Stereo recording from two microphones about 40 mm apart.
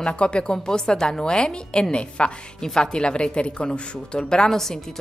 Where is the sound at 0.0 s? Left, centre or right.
Left.